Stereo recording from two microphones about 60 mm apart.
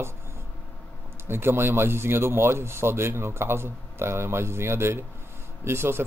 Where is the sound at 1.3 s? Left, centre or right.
Right.